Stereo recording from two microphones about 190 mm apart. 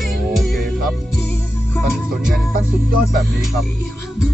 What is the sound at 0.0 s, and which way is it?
Music, centre (ahead or behind).